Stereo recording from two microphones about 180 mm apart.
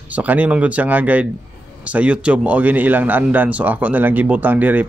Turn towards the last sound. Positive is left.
turn(degrees=-10)  # may be behind; listen again after turning